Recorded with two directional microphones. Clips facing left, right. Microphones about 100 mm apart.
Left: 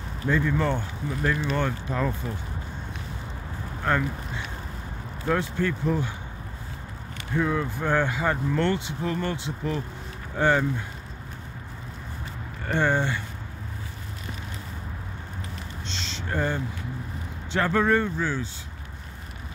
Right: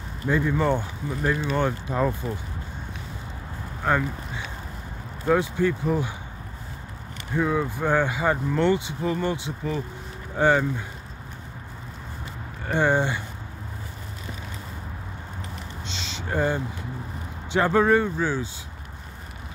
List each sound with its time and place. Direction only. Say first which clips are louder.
0.3 s speech: right 2 dB; 15° right (ahead or behind)
3.9 s speech: right 2 dB; 10° right (ahead or behind)
5.3 s speech: right 4 dB; 10° right (ahead or behind)
7.3 s speech: right 2 dB; 5° right (ahead or behind)
12.7 s speech: right 2 dB; 15° right (ahead or behind)
15.9 s a sound: right 2 dB; 5° right (ahead or behind)
17.5 s speech: right 3 dB; 15° right (ahead or behind)